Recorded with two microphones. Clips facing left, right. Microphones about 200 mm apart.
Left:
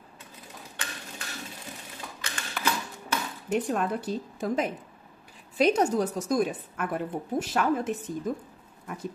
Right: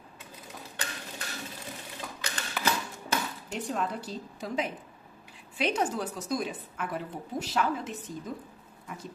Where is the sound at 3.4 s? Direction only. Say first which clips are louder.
Left 9 dB; 55° left (ahead or behind).